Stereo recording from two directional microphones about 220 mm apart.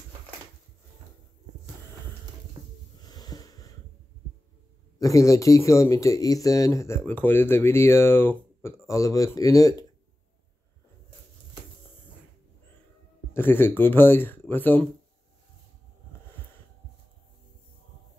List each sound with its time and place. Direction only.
3.0 s wheeze: 15° left (ahead or behind)
4.9 s speech: 15° left (ahead or behind)
13.3 s speech: 10° left (ahead or behind)